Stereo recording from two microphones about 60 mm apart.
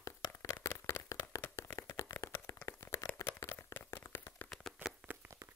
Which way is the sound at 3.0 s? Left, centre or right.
Left.